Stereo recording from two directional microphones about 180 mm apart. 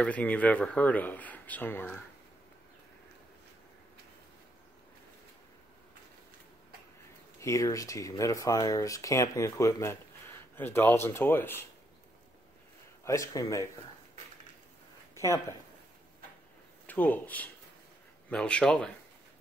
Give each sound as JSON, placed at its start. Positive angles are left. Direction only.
{"t": 0.0, "sound": "speech", "side_deg": 10}
{"t": 7.3, "sound": "speech", "side_deg": 15}
{"t": 13.0, "sound": "speech", "side_deg": 15}
{"t": 15.1, "sound": "speech", "side_deg": 15}
{"t": 16.8, "sound": "speech", "side_deg": 10}